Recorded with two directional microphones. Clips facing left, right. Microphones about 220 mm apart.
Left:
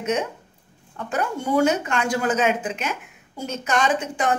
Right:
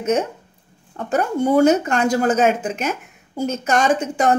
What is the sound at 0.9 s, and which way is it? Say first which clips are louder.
Speech: right 6 dB; 40° right (ahead or behind).